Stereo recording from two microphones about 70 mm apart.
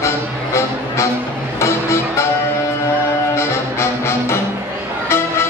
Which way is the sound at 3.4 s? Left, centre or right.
Left.